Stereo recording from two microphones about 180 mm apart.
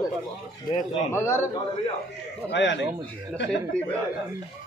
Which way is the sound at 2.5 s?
80° left.